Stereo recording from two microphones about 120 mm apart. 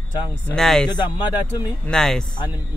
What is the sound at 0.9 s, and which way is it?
Speech, 40° left (ahead or behind).